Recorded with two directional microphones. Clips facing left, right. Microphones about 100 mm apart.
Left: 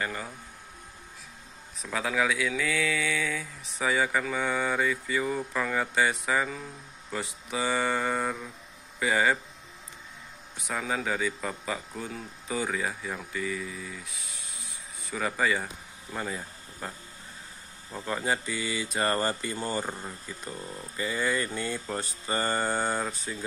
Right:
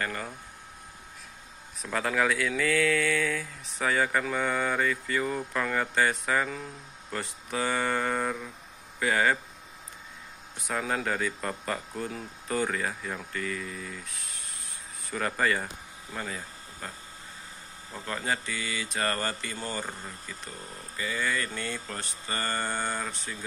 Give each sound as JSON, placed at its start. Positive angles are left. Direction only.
{"t": 0.0, "sound": "speech", "side_deg": 10}
{"t": 1.8, "sound": "speech", "side_deg": 0}
{"t": 10.7, "sound": "speech", "side_deg": 0}
{"t": 17.9, "sound": "speech", "side_deg": 15}